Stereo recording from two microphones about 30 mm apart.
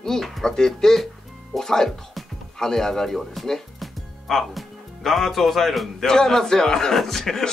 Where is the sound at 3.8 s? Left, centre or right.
Centre.